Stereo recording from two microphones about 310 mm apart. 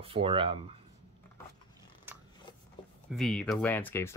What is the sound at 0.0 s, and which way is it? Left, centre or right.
Speech, centre.